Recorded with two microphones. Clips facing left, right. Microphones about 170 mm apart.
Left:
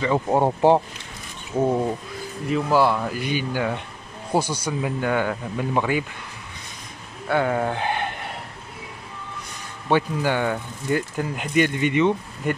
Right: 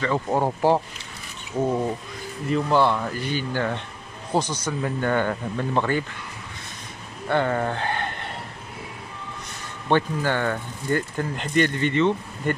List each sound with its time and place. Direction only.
0.0 s speech: 15° left (ahead or behind)
2.4 s speech: 5° left (ahead or behind)
7.2 s speech: 5° left (ahead or behind)
9.8 s speech: 10° left (ahead or behind)